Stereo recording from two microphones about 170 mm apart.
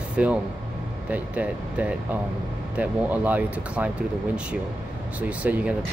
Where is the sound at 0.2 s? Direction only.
5° right (ahead or behind).